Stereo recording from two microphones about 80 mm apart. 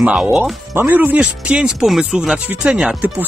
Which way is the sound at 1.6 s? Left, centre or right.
Centre.